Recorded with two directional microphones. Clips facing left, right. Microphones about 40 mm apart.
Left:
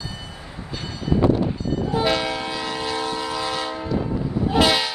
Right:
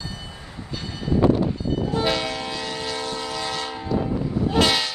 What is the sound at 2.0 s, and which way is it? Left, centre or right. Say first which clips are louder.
Train: left 5 dB; centre.